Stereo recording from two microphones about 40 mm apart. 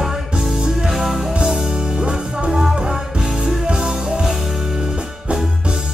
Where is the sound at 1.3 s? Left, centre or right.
Centre.